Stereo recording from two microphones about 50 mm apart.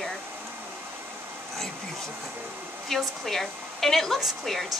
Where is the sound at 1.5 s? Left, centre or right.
Centre.